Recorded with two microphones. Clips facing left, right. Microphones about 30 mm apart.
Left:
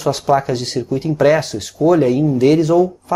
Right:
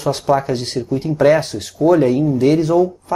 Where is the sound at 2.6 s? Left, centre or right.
Centre.